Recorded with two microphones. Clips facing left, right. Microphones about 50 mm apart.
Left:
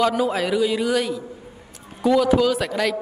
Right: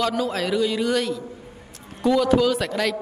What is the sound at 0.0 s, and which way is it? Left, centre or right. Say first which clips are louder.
A woman's voice: left 3 dB; centre.